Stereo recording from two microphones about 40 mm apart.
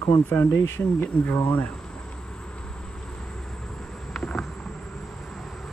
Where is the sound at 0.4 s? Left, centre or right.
Left.